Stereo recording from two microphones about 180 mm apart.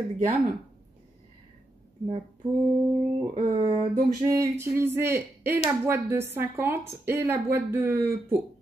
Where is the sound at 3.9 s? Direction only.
15° right (ahead or behind).